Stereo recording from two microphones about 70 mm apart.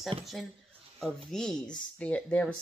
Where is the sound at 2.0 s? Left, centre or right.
Left.